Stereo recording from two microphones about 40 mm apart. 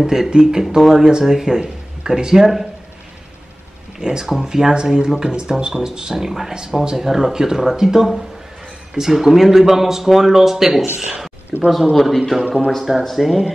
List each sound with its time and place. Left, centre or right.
0.0 s speech: centre
0.7 s a man's voice: centre
1.0 s speech: centre
4.0 s a man's voice: centre
12.4 s speech: centre
13.2 s speech: centre